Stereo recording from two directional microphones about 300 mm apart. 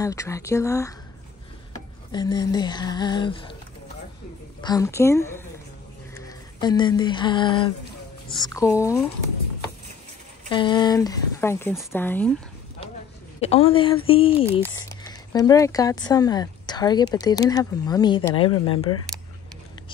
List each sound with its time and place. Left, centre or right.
0.0 s speech: centre
2.1 s speech: centre
4.6 s speech: centre
6.1 s a sound: centre
8.4 s speech: centre
10.5 s speech: centre
13.4 s a woman's voice: centre